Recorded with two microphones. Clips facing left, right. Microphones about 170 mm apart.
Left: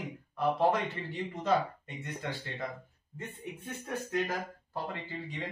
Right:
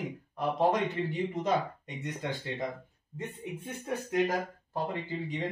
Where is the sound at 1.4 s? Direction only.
15° right (ahead or behind).